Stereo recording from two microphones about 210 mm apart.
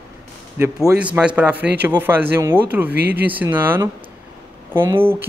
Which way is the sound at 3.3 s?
10° right (ahead or behind).